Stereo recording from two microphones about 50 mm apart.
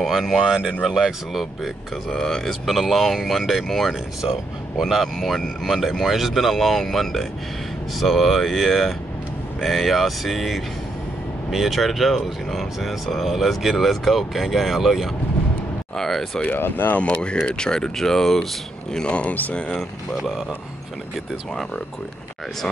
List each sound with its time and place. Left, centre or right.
0.0 s speech: centre
0.4 s speech: centre
2.0 s speech: centre
16.5 s speech: left
16.9 s speech: left
19.1 s speech: left